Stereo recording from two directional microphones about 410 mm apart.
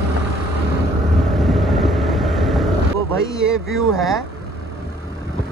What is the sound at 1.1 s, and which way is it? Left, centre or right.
Vehicle, centre.